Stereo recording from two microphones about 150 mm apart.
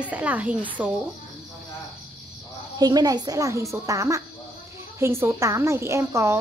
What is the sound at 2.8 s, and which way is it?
A woman's voice, 25° right (ahead or behind).